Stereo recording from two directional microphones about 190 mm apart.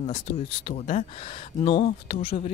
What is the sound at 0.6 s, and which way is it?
Speech, 35° left (ahead or behind).